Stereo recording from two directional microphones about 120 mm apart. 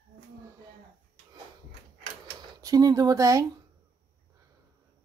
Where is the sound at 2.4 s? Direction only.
30° right (ahead or behind).